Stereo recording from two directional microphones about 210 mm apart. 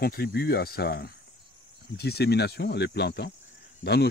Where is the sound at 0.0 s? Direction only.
45° left (ahead or behind).